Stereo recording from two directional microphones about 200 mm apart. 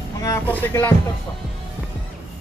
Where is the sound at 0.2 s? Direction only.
10° left (ahead or behind).